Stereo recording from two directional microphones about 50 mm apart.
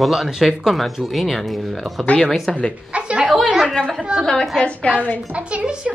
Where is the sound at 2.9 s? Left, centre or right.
Right.